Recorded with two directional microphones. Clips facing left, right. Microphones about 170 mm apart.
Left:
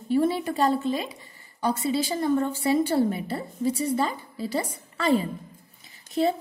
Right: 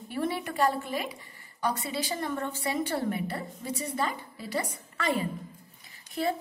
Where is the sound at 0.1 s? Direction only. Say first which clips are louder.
Left 8 dB; 25° left (ahead or behind).